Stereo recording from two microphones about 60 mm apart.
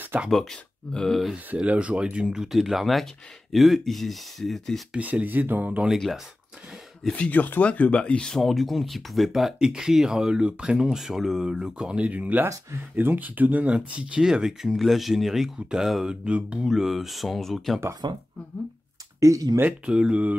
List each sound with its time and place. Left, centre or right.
0.3 s speech: centre
1.7 s speech: right; by 4.8 s centre
4.9 s speech: right
7.2 s speech: left
8.4 s speech: centre
12.0 s speech: right; by 16.2 s centre
16.3 s speech: centre
16.6 s speech: centre
19.1 s speech: right
19.9 s speech: centre